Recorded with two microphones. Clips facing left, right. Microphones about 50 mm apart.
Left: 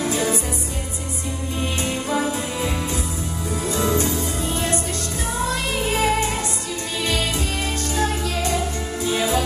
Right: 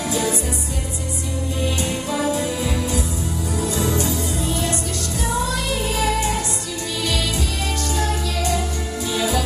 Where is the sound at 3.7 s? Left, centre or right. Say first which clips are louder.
Left 3 dB; left.